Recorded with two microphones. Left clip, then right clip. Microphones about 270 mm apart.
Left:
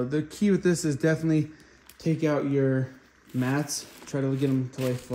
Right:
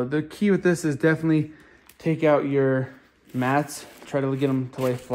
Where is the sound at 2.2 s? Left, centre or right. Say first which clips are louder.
Right 6 dB; centre.